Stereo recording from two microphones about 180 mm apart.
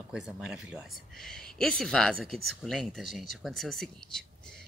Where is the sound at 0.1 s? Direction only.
5° right (ahead or behind).